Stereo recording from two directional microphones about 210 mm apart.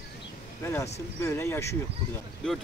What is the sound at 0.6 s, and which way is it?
Speech, 10° left (ahead or behind).